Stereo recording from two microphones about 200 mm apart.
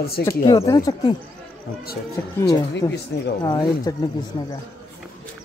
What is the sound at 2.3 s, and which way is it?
Speech, 15° left (ahead or behind).